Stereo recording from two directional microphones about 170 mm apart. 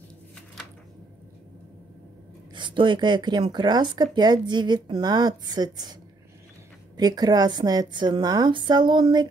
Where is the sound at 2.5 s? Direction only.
30° right (ahead or behind).